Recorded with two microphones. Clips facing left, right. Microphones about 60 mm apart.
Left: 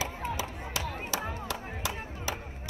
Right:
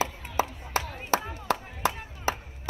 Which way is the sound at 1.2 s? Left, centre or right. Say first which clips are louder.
Even; left.